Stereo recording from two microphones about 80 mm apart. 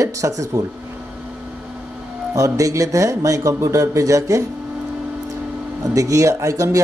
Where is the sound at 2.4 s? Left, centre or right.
Right.